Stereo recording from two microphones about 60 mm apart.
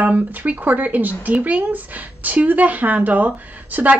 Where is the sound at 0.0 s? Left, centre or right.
Right.